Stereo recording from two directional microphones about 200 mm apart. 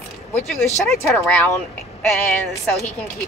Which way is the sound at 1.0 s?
5° left (ahead or behind).